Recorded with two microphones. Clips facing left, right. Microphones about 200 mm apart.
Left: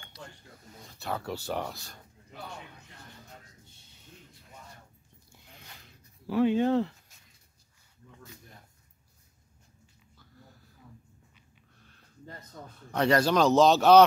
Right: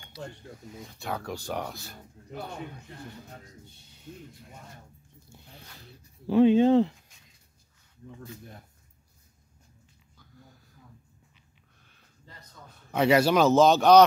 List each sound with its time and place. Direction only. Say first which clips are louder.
0.7 s speech: even; centre (ahead or behind)
6.2 s speech: right 5 dB; 20° right (ahead or behind)
12.6 s a man's voice: left 5 dB; 45° left (ahead or behind)
12.9 s speech: right 3 dB; 5° right (ahead or behind)